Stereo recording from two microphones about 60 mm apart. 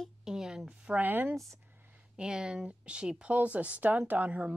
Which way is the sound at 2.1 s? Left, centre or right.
Centre.